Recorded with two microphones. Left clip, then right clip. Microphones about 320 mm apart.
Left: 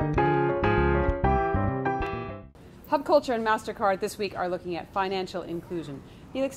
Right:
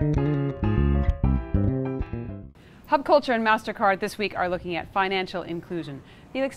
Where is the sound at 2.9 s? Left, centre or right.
Right.